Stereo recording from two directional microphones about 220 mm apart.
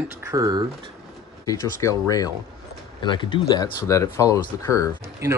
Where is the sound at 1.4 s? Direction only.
15° left (ahead or behind).